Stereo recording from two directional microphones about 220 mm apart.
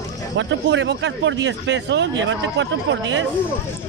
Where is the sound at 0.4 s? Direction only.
55° right (ahead or behind).